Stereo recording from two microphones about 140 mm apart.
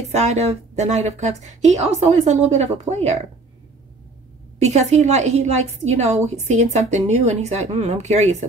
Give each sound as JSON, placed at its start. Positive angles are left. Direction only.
{"t": 0.1, "sound": "a woman's voice", "side_deg": -50}
{"t": 4.6, "sound": "a woman's voice", "side_deg": -50}